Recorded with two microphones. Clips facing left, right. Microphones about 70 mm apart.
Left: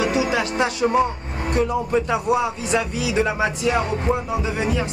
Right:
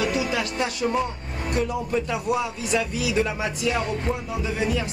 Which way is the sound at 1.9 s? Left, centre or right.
Left.